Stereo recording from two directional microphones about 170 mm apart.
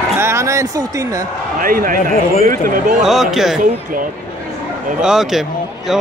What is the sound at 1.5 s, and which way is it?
Speech, 55° right (ahead or behind).